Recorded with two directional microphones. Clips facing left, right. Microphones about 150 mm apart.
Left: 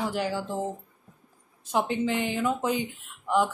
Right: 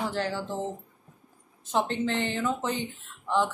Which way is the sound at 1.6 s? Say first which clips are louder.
Left 1 dB; 10° left (ahead or behind).